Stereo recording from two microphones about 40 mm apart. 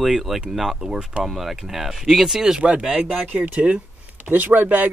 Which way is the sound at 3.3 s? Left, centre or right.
Right.